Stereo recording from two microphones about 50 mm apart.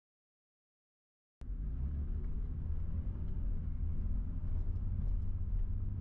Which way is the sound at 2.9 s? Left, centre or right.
Centre.